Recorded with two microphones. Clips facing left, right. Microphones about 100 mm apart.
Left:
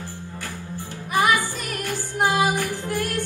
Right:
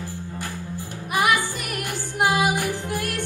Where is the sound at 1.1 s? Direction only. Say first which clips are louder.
Left 1 dB; 15° right (ahead or behind).